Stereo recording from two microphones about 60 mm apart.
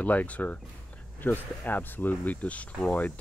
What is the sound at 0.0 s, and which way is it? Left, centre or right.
Speech, left.